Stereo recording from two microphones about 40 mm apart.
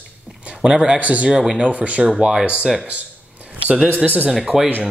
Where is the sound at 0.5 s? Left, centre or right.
Right.